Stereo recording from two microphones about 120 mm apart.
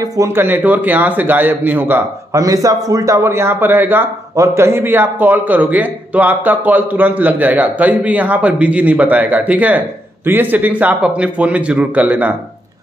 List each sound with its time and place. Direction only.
0.0 s a man's voice: 30° right (ahead or behind)
2.3 s a man's voice: 30° right (ahead or behind)